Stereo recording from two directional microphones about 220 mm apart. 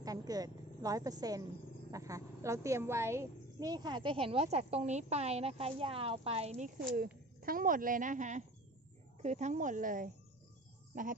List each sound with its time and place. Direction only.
0.0 s a woman's voice: 15° right (ahead or behind); by 11.1 s 35° right (ahead or behind)